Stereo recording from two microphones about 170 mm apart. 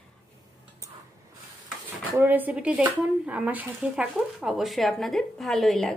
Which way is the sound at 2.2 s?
10° right (ahead or behind).